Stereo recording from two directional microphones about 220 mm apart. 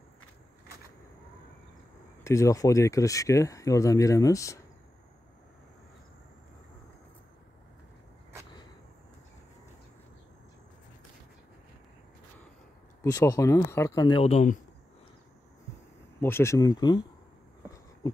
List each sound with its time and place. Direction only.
2.2 s speech: 15° left (ahead or behind)
13.0 s speech: 15° left (ahead or behind); by 14.6 s 30° left (ahead or behind)
16.2 s speech: 10° left (ahead or behind)
18.0 s a sound: 15° left (ahead or behind)